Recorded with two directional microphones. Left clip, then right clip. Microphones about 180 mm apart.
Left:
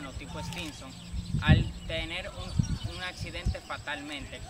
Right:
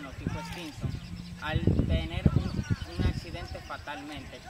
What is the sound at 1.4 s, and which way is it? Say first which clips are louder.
Speech: left 1 dB; 15° left (ahead or behind).